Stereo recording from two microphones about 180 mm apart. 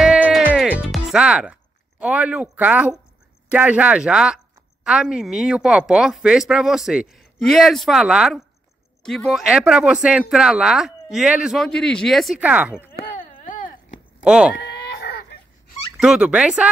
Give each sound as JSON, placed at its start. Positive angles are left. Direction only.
{"t": 0.0, "sound": "music", "side_deg": -5}
{"t": 2.0, "sound": "speech", "side_deg": -5}
{"t": 13.4, "sound": "a sound", "side_deg": 45}
{"t": 14.2, "sound": "speech", "side_deg": -5}
{"t": 14.5, "sound": "a sound", "side_deg": 65}
{"t": 16.0, "sound": "speech", "side_deg": -5}